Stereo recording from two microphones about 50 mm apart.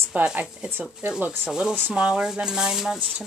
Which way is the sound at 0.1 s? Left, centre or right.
Right.